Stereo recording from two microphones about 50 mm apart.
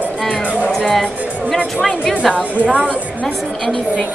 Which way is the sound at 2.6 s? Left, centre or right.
Centre.